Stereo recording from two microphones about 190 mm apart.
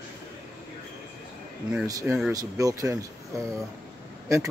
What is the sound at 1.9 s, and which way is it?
Speech, 20° right (ahead or behind).